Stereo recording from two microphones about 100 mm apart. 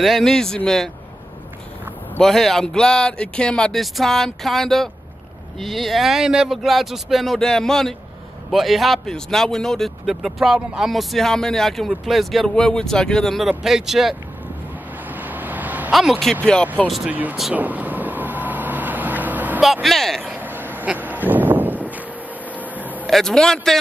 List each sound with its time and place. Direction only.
0.0 s a man's voice: 5° left (ahead or behind)
2.1 s a man's voice: 5° left (ahead or behind)
15.1 s vehicle: 15° right (ahead or behind)
15.9 s a man's voice: centre (ahead or behind)
17.1 s speech: 15° right (ahead or behind)
17.6 s vehicle: 15° right (ahead or behind)
19.6 s a man's voice: centre (ahead or behind)
20.2 s a sound: 15° right (ahead or behind)
22.8 s music: 15° right (ahead or behind)
23.0 s a man's voice: 5° left (ahead or behind)